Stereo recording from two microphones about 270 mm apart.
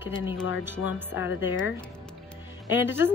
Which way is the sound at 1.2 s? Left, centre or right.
Left.